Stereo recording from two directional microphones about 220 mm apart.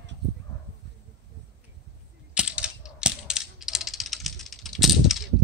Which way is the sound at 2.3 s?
5° right (ahead or behind).